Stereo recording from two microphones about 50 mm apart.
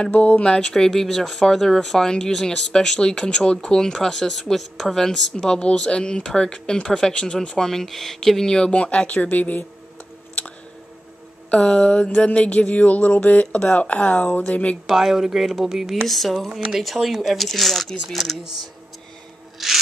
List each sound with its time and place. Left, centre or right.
0.0 s speech: left
8.7 s speech: left
11.5 s speech: left
14.9 s speech: centre
16.1 s speech: centre
19.6 s rub: centre